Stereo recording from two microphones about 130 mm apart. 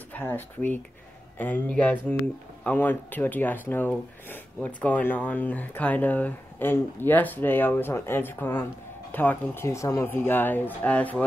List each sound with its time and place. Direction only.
0.1 s speech: 15° left (ahead or behind)